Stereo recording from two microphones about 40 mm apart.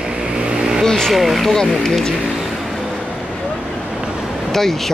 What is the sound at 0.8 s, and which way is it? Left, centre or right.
Vehicle, centre.